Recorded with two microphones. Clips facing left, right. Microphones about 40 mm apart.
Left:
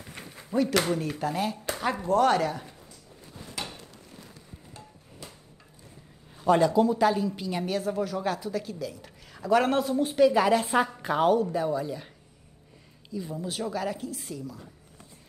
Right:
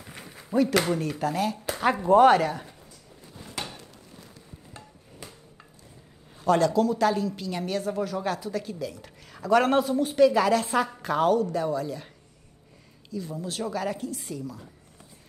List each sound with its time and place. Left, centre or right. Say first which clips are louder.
0.1 s speech: right 2 dB; centre
1.8 s speech: right 6 dB; centre
2.3 s speech: right 3 dB; centre
3.5 s a sound: right 1 dB; centre
6.4 s a woman's voice: even; centre
13.1 s a woman's voice: even; centre